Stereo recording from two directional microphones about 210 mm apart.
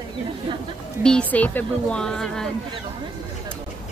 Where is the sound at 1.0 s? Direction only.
5° left (ahead or behind).